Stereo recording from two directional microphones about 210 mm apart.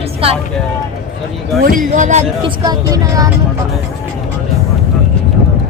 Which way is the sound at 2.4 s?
20° right (ahead or behind).